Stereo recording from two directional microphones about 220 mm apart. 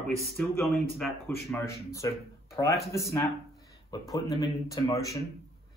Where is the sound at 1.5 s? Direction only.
15° left (ahead or behind).